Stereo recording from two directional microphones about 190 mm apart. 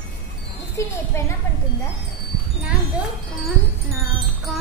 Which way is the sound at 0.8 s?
15° left (ahead or behind).